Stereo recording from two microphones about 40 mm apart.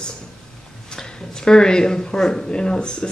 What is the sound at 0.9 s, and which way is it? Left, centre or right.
Speech, centre.